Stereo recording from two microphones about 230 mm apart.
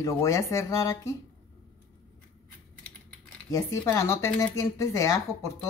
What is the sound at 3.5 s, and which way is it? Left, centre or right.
A woman's voice, centre.